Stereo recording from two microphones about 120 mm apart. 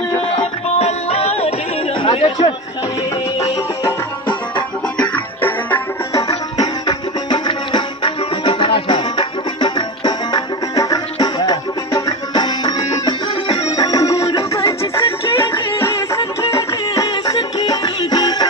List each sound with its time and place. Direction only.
0.7 s music: 60° left (ahead or behind)
2.0 s chatter: 40° left (ahead or behind)
4.9 s music: 10° left (ahead or behind)
6.1 s music: 30° left (ahead or behind)